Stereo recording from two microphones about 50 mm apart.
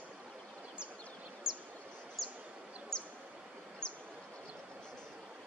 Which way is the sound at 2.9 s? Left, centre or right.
Centre.